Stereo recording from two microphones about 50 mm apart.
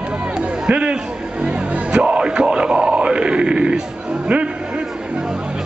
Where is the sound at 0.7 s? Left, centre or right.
Right.